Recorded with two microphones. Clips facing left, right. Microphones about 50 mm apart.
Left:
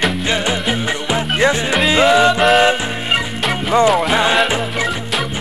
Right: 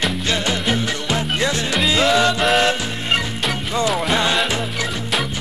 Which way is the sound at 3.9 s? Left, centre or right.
Centre.